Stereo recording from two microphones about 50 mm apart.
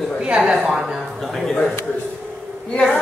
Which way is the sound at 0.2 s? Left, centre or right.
Centre.